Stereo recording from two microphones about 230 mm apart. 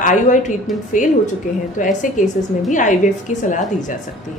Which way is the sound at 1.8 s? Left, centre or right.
Left.